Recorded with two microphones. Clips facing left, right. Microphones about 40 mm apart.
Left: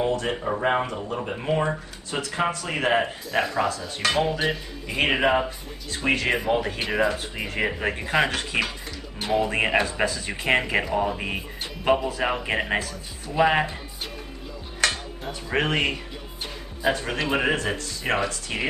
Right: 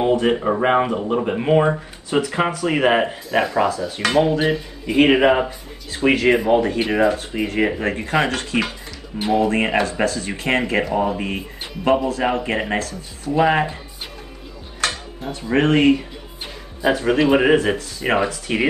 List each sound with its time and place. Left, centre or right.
0.1 s speech: right
3.3 s speech: centre
15.2 s speech: centre
18.5 s speech: right